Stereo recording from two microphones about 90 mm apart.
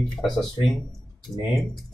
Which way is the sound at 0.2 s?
Centre (ahead or behind).